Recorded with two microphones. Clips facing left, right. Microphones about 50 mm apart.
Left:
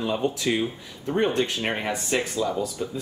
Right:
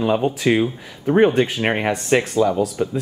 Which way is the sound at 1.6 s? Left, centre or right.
Right.